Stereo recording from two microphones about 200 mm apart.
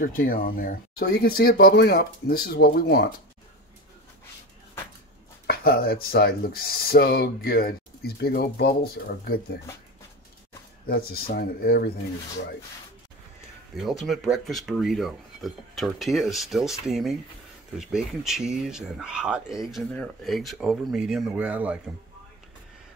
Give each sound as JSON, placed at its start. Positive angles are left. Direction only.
{"t": 0.0, "sound": "speech", "side_deg": 45}
{"t": 5.5, "sound": "speech", "side_deg": 50}
{"t": 10.9, "sound": "speech", "side_deg": 50}
{"t": 13.7, "sound": "speech", "side_deg": 0}